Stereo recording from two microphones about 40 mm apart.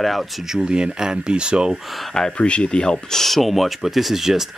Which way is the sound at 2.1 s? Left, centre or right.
Centre.